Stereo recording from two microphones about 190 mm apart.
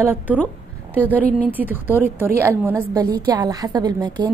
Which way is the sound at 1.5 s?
10° right (ahead or behind).